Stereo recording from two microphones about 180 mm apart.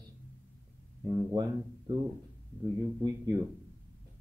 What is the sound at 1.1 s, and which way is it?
Speech, 20° right (ahead or behind).